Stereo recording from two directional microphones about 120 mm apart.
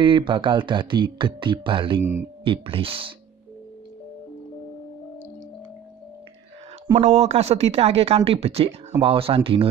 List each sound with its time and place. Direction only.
0.0 s speech: 45° right (ahead or behind)
7.0 s speech: 70° right (ahead or behind); by 9.7 s 50° right (ahead or behind)